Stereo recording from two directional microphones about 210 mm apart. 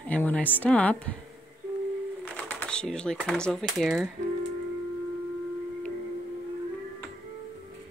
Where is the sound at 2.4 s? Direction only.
5° left (ahead or behind).